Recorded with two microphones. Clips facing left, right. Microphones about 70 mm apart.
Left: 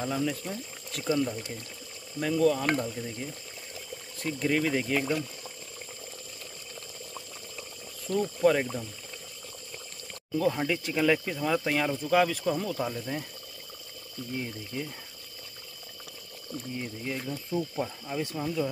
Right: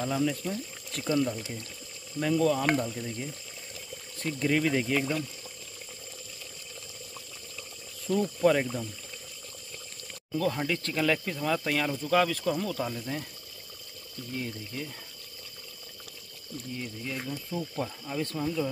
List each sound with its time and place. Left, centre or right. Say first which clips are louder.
0.0 s speech: right 1 dB; centre
8.2 s speech: left 1 dB; centre
10.3 s speech: left 2 dB; centre
14.3 s speech: left 1 dB; centre
16.7 s speech: left 1 dB; left
17.7 s speech: left 1 dB; centre